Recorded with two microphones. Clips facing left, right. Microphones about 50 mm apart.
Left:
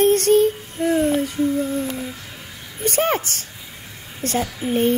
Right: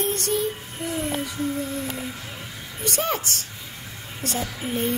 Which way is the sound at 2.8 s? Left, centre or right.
Left.